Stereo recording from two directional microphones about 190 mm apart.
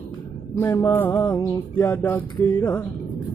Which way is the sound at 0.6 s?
10° left (ahead or behind).